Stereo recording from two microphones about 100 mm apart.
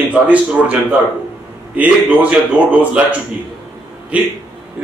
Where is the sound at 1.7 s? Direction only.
15° right (ahead or behind).